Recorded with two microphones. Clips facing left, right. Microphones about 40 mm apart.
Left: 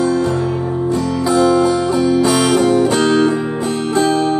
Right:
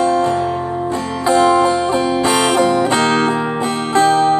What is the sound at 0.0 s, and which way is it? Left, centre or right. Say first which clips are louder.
Music: right 1 dB; right.